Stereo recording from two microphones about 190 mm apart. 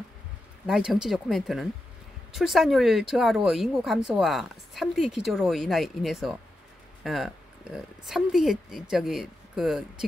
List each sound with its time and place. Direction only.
0.7 s speech: 5° right (ahead or behind)